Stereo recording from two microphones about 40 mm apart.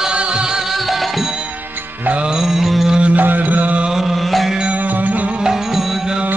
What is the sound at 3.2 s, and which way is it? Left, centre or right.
Music, right.